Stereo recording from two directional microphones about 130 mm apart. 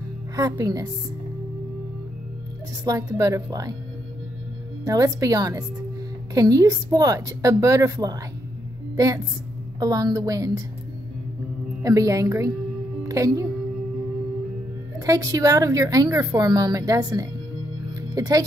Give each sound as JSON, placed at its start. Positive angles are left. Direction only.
{"t": 0.4, "sound": "a woman's voice", "side_deg": -25}
{"t": 2.8, "sound": "a woman's voice", "side_deg": -25}
{"t": 4.8, "sound": "a woman's voice", "side_deg": -25}
{"t": 11.8, "sound": "a woman's voice", "side_deg": -25}
{"t": 15.0, "sound": "a woman's voice", "side_deg": -25}